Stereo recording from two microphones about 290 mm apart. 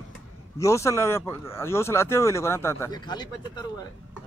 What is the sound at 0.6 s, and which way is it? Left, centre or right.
Speech, centre.